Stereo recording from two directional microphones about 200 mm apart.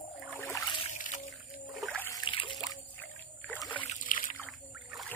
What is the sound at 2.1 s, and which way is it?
Rowboat, 20° left (ahead or behind).